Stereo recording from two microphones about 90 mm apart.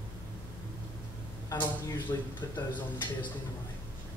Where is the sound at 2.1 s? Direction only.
35° left (ahead or behind).